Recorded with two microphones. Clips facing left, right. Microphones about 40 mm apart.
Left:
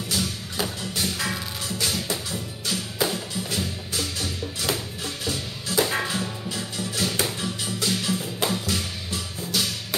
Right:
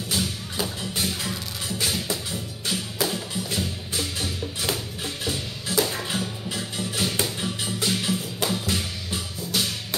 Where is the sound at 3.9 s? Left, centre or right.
Centre.